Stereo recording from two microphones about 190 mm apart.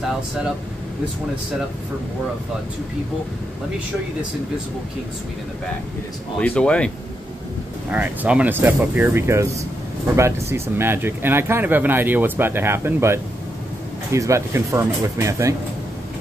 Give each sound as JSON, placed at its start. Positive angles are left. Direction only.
{"t": 6.4, "sound": "speech", "side_deg": 5}
{"t": 7.9, "sound": "speech", "side_deg": -10}